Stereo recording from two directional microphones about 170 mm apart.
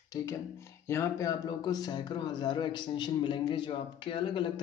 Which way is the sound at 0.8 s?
15° left (ahead or behind).